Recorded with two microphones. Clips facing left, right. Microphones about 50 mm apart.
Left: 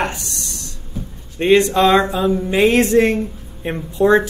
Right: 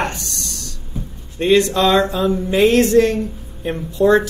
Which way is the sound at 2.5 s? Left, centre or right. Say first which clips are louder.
Right 1 dB; left.